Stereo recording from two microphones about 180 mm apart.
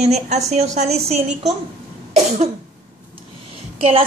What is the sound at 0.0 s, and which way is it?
Speech, 40° right (ahead or behind).